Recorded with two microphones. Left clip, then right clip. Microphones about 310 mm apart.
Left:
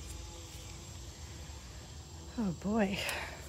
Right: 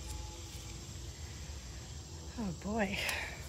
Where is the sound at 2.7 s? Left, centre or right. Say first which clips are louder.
Left 2 dB; left.